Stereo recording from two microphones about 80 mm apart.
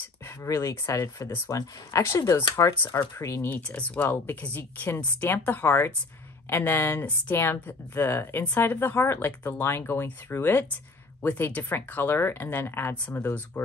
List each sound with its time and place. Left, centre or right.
0.4 s speech: left
3.2 s speech: left
3.4 s a woman's voice: centre